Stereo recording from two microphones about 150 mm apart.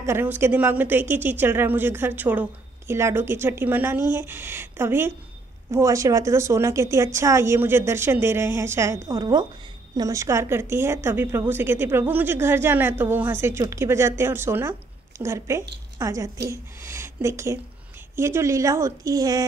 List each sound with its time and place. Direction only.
0.0 s a woman's voice: 15° right (ahead or behind)